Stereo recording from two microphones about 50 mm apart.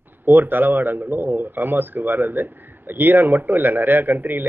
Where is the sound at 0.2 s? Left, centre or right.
Right.